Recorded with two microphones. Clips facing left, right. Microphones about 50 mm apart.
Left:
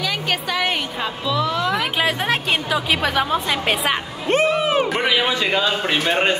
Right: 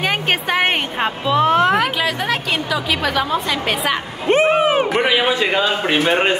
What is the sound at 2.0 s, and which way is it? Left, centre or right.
A woman's voice, left.